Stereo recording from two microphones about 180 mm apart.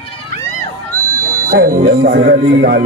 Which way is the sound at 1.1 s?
20° right (ahead or behind).